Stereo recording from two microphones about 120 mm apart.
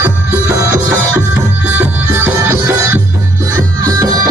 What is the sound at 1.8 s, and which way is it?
Music, 15° right (ahead or behind).